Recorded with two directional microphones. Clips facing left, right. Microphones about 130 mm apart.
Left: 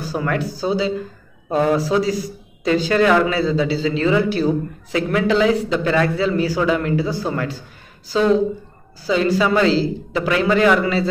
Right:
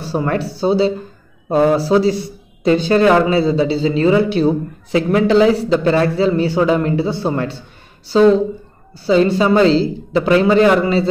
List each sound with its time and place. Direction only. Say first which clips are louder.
0.0 s a man's voice: right 3 dB; 30° right (ahead or behind)